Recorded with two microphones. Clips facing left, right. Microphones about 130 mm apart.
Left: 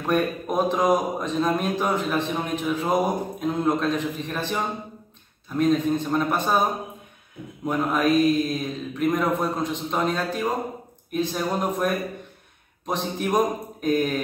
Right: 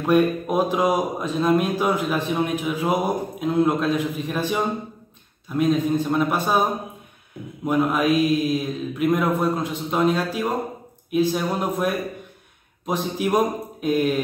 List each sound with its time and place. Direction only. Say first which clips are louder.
0.0 s speech: right 5 dB; 5° right (ahead or behind)
7.6 s speech: right 2 dB; 5° right (ahead or behind)